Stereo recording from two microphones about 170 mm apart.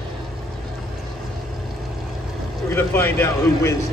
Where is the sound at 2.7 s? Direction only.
15° left (ahead or behind).